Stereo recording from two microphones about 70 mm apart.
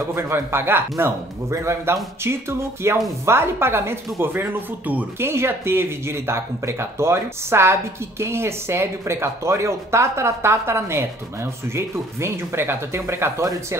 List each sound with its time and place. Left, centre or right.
0.0 s speech: right